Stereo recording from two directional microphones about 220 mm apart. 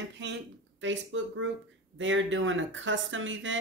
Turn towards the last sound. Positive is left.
turn(degrees=-60)  # may be behind; listen again after turning